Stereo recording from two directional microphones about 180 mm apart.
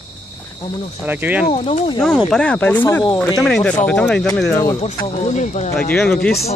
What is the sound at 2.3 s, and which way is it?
Speech, 5° left (ahead or behind).